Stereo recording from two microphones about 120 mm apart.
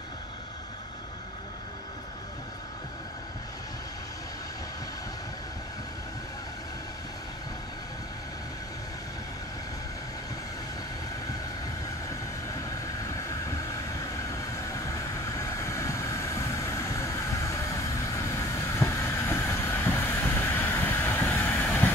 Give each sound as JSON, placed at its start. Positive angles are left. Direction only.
{"t": 12.8, "sound": "vehicle", "side_deg": 25}
{"t": 14.9, "sound": "vehicle", "side_deg": 25}
{"t": 21.8, "sound": "train", "side_deg": 15}